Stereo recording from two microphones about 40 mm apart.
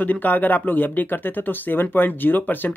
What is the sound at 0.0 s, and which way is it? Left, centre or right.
Speech, left.